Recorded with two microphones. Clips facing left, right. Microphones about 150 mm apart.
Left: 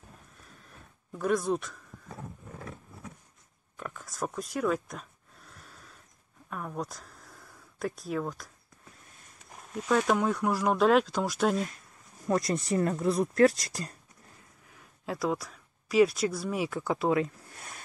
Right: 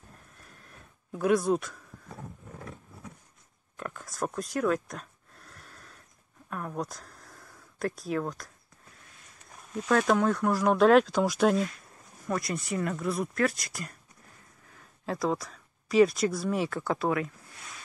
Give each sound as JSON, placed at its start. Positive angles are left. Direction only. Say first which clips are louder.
{"t": 1.1, "sound": "speech", "louder": "right 3 dB", "side_deg": -5}
{"t": 3.7, "sound": "a sound", "louder": "right 2 dB", "side_deg": 0}
{"t": 6.5, "sound": "speech", "louder": "right 1 dB", "side_deg": 0}
{"t": 9.8, "sound": "speech", "louder": "right 2 dB", "side_deg": 5}
{"t": 12.3, "sound": "speech", "louder": "left 4 dB", "side_deg": 35}
{"t": 15.0, "sound": "speech", "louder": "right 1 dB", "side_deg": 5}
{"t": 17.6, "sound": "a sound", "louder": "left 1 dB", "side_deg": 50}